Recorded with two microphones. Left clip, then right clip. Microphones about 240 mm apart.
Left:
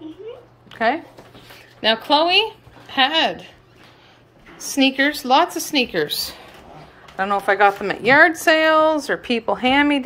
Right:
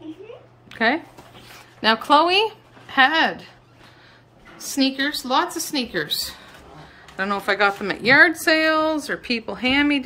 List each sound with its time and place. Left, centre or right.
0.7 s a sound: right
2.0 s a woman's voice: centre
4.8 s speech: centre
7.2 s a woman's voice: centre